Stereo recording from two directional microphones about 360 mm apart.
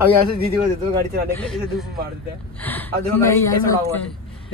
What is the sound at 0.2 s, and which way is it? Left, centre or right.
Speech, right.